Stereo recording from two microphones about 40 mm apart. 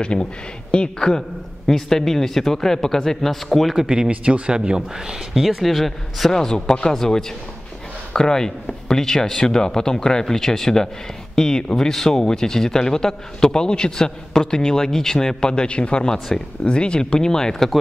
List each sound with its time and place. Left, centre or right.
0.0 s a man's voice: left; by 3.7 s centre
3.7 s speech: centre
4.1 s speech: right
5.3 s speech: centre
6.3 s speech: centre